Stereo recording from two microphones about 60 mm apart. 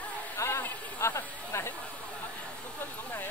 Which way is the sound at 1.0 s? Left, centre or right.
Left.